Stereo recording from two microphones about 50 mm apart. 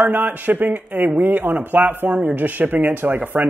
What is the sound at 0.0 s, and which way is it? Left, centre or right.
A man's voice, right.